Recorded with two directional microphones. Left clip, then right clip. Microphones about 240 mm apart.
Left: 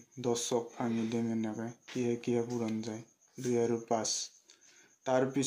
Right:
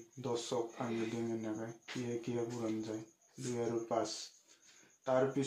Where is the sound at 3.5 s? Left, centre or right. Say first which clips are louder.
Left 5 dB; left.